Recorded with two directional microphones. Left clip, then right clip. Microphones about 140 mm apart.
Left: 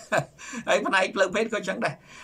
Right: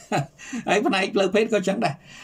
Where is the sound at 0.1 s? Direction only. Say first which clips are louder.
Even; 25° right (ahead or behind).